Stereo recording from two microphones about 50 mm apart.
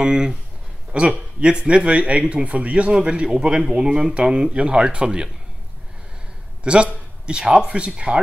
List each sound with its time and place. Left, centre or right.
0.0 s speech: centre
6.6 s speech: right